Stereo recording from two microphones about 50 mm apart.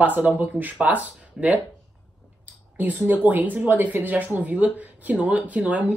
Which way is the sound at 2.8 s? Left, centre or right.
Right.